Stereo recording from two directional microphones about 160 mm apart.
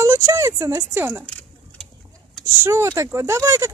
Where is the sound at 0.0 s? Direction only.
20° right (ahead or behind).